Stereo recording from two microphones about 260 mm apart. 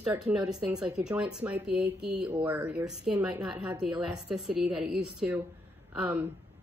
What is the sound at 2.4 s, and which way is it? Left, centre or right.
Speech, centre.